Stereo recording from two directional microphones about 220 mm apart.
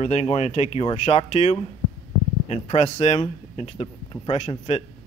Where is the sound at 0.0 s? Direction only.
30° left (ahead or behind).